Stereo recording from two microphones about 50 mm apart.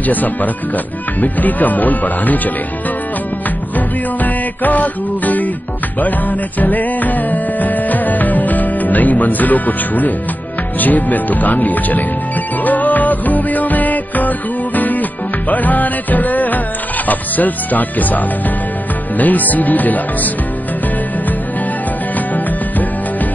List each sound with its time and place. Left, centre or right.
0.0 s speech: left
3.7 s music: left
6.6 s music: left
10.8 s speech: left
12.6 s music: left
17.1 s speech: left